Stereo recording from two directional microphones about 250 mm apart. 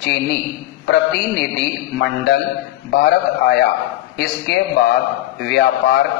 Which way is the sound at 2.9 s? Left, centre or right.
Left.